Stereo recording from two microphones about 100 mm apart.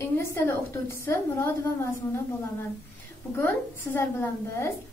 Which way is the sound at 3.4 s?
25° left (ahead or behind).